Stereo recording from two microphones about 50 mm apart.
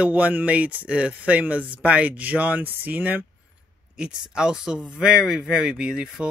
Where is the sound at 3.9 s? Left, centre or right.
Centre.